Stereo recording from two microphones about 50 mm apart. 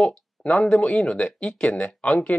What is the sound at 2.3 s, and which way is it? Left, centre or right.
Speech, left.